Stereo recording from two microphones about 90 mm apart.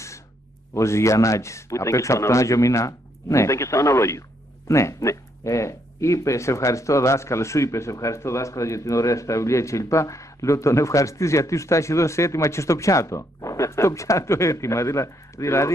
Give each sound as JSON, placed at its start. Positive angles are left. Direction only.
{"t": 0.7, "sound": "speech", "side_deg": 35}